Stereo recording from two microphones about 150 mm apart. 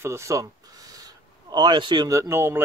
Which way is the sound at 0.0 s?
20° right (ahead or behind).